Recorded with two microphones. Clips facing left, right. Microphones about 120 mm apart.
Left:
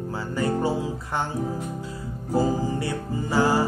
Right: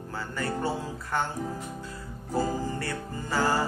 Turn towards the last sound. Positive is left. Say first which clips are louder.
# left 5 dB
turn(degrees=10)  # may be behind; listen again after turning